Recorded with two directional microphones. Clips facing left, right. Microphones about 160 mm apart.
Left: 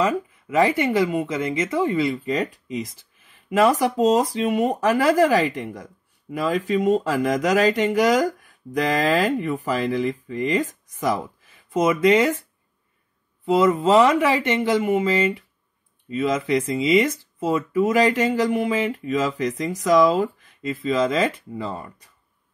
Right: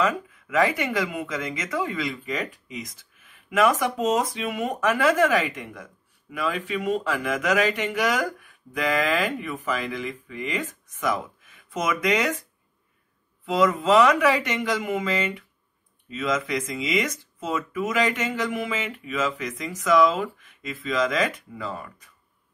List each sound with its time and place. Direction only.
0.0 s speech: 30° left (ahead or behind)
13.6 s speech: 30° left (ahead or behind)